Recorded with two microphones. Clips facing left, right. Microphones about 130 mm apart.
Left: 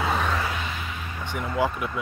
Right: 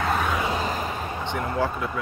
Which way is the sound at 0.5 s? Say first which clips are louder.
Right 6 dB; 40° right (ahead or behind).